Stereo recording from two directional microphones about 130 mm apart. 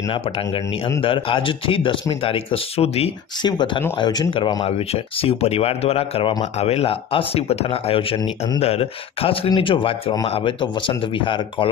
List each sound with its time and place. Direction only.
1.0 s speech: 40° left (ahead or behind)
3.4 s speech: 35° left (ahead or behind)
4.6 s speech: 50° left (ahead or behind)